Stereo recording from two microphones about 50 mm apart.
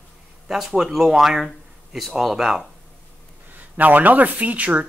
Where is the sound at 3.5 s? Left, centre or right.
Right.